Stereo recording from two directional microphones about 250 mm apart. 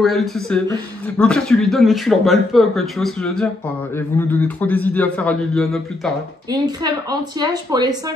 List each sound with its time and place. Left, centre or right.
0.0 s a man's voice: centre
6.5 s speech: centre